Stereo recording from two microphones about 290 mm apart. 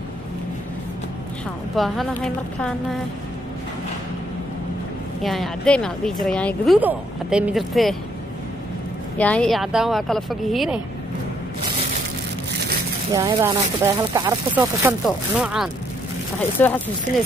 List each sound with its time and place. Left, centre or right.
1.8 s speech: centre
5.2 s speech: centre
9.2 s speech: centre
13.1 s speech: centre
17.1 s speech: left